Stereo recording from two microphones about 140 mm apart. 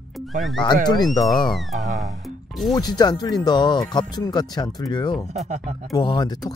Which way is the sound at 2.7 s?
30° left (ahead or behind).